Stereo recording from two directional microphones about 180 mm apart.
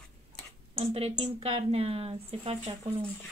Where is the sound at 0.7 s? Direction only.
35° right (ahead or behind).